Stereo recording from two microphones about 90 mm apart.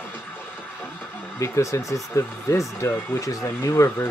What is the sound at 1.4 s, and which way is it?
Speech, 35° left (ahead or behind).